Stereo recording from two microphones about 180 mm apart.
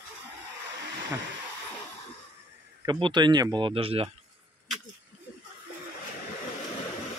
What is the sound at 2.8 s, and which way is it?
Speech, 25° right (ahead or behind).